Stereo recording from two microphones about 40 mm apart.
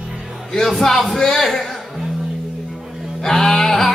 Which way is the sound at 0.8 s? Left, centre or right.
Centre.